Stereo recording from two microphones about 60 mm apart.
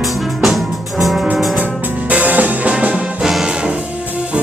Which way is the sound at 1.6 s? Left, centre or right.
Right.